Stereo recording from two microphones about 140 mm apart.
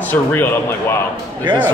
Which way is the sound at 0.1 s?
15° left (ahead or behind).